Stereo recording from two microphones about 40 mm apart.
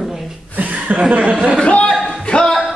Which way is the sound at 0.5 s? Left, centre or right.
Right.